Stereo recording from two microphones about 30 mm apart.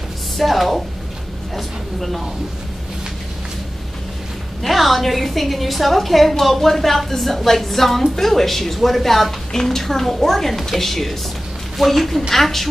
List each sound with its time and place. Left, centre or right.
0.4 s a woman's voice: centre
4.6 s a woman's voice: centre